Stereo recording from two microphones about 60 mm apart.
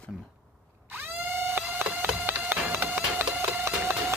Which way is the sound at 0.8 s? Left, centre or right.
Right.